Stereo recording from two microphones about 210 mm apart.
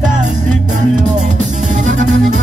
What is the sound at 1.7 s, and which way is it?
Music, 35° right (ahead or behind).